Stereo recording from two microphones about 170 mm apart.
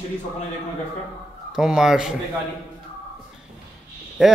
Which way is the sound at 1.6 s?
5° right (ahead or behind).